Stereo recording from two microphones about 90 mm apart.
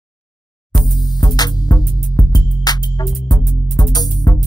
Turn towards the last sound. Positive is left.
turn(degrees=50)  # may be behind; listen again after turning